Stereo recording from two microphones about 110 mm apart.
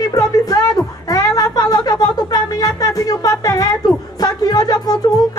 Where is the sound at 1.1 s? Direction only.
35° left (ahead or behind).